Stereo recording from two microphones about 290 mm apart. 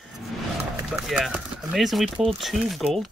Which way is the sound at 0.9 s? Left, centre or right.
Centre.